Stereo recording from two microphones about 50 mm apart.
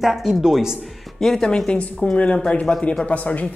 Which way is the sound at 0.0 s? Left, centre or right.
Centre.